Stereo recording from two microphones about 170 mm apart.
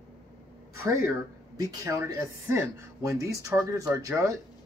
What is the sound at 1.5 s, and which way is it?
Speech, 20° right (ahead or behind).